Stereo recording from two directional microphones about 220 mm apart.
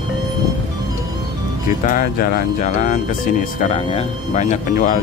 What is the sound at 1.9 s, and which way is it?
Speech, 40° left (ahead or behind).